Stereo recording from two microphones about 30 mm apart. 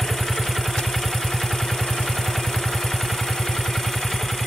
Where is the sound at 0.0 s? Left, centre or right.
Centre.